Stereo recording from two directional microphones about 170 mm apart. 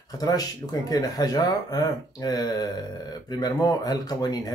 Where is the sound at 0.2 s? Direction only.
20° left (ahead or behind).